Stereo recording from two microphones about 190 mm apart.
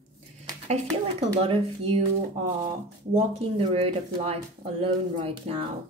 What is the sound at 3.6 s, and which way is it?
Speech, 30° right (ahead or behind).